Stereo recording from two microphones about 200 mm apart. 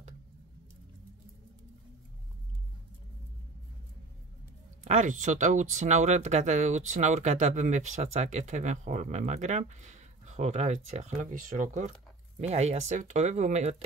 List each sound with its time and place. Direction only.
4.8 s speech: 35° right (ahead or behind)